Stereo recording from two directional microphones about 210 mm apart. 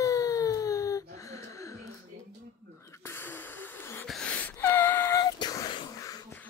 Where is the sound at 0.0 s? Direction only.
15° left (ahead or behind).